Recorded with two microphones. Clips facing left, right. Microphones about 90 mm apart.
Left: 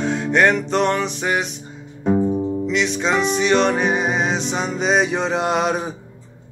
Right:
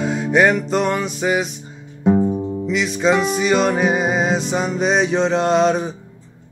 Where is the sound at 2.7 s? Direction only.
5° right (ahead or behind).